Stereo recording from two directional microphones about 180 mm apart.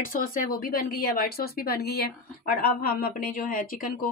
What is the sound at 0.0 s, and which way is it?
A woman's voice, 50° left (ahead or behind).